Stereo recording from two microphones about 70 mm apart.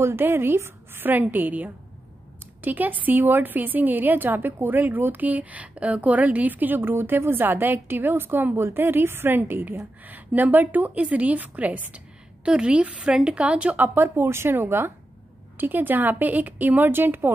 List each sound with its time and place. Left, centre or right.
0.0 s a woman's voice: right